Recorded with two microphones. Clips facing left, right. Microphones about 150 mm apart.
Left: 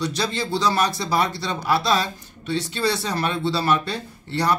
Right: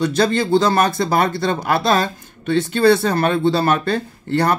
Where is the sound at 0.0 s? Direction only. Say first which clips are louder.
Right 8 dB; 50° right (ahead or behind).